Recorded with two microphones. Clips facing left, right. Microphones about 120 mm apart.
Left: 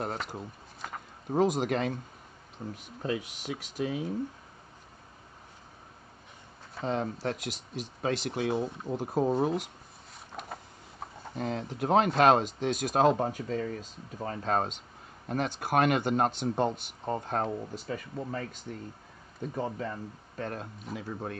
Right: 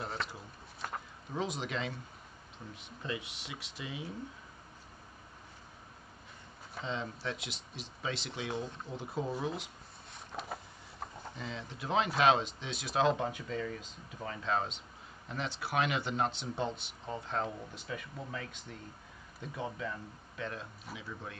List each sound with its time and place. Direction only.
0.8 s a sound: centre (ahead or behind)
1.3 s speech: 50° left (ahead or behind)
6.8 s speech: 50° left (ahead or behind)
11.3 s speech: 50° left (ahead or behind)